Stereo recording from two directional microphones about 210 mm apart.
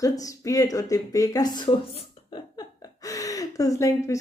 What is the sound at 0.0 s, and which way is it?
Speech, 15° left (ahead or behind).